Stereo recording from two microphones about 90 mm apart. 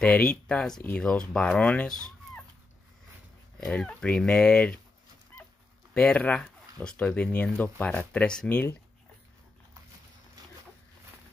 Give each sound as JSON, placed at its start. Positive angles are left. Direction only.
{"t": 0.0, "sound": "speech", "side_deg": 10}
{"t": 3.5, "sound": "speech", "side_deg": 5}
{"t": 5.9, "sound": "speech", "side_deg": 10}